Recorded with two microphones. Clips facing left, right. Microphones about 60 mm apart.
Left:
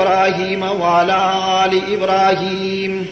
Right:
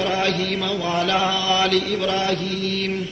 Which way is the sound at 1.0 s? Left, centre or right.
Left.